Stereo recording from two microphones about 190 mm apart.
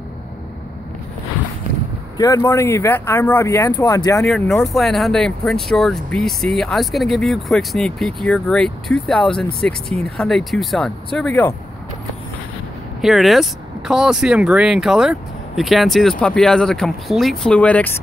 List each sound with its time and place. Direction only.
2.1 s speech: 15° left (ahead or behind)
4.3 s speech: centre (ahead or behind)
13.0 s speech: centre (ahead or behind)